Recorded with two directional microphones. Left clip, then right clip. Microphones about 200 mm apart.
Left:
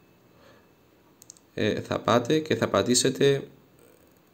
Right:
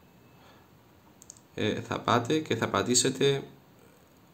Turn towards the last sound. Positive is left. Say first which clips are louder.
# left 3 dB
turn(degrees=20)  # may be behind; listen again after turning